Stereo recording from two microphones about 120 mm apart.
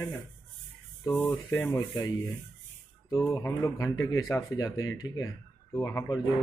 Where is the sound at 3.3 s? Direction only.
25° left (ahead or behind).